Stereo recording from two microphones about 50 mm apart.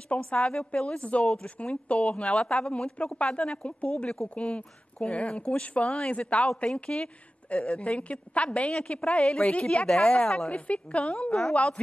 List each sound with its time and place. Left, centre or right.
0.1 s a woman's voice: left
6.7 s a woman's voice: centre
7.4 s a woman's voice: left
10.2 s a woman's voice: centre
10.5 s a woman's voice: left